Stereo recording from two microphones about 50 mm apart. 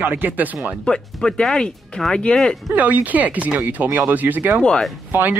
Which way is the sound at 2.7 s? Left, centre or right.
Right.